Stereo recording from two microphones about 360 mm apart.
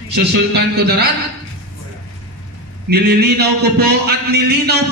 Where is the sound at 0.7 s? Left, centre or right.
Right.